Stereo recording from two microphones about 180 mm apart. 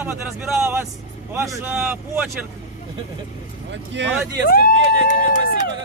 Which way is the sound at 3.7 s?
80° right.